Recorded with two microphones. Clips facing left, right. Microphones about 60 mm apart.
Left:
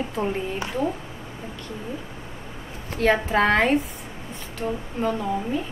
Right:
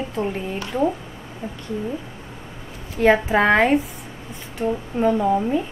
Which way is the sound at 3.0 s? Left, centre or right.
Centre.